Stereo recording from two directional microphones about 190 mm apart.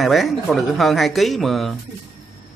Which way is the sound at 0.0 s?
Centre (ahead or behind).